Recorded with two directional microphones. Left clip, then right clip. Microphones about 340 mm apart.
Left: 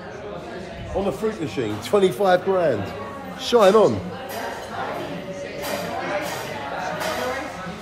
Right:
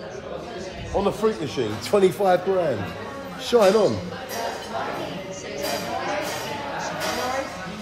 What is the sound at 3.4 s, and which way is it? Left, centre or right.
Speech, centre.